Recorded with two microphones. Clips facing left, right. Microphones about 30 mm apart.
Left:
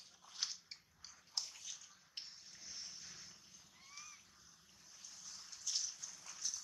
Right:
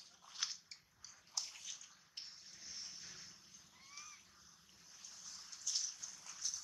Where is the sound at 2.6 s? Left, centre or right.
Centre.